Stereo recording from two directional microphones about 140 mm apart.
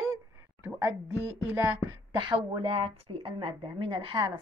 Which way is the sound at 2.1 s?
35° right (ahead or behind).